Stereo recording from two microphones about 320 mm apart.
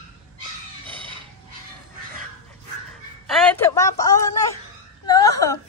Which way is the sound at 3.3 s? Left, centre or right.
Centre.